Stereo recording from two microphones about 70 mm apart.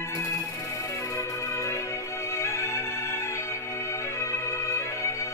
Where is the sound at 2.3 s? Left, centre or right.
Left.